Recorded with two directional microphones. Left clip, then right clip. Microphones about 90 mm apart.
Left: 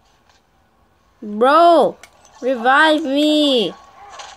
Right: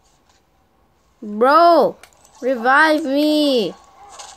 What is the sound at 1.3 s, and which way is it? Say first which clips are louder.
Speech: left 1 dB; 5° left (ahead or behind).